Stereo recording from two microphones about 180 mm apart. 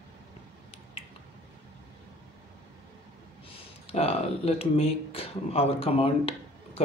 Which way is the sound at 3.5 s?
35° left (ahead or behind).